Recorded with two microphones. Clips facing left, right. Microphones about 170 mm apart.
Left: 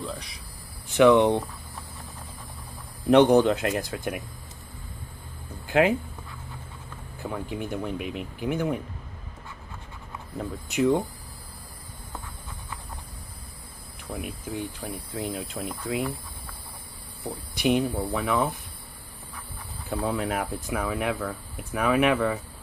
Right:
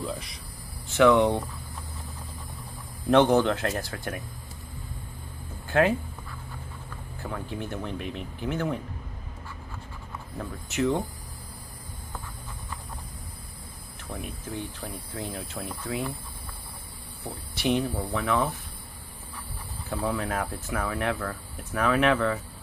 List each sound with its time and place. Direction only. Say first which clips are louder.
0.0 s speech: right 1 dB; centre (ahead or behind)
0.8 s hum: left 2 dB; 15° left (ahead or behind)
3.1 s speech: left 3 dB; 15° left (ahead or behind)
5.5 s a sound: left 1 dB; 15° left (ahead or behind)
7.2 s speech: left 2 dB; 20° left (ahead or behind)
10.7 s speech: left 3 dB; 15° left (ahead or behind)
14.1 s speech: left 2 dB; 15° left (ahead or behind)
17.2 s speech: left 4 dB; 15° left (ahead or behind)
19.9 s speech: left 2 dB; 20° left (ahead or behind)